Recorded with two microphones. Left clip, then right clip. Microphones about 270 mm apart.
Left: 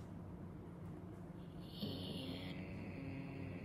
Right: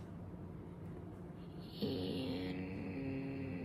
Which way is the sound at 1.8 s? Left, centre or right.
Centre.